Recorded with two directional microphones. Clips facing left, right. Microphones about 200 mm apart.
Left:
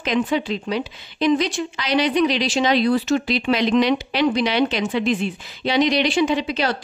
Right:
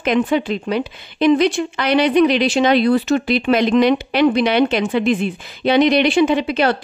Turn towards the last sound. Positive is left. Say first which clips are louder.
# right 5 dB
turn(degrees=-55)  # may be behind; listen again after turning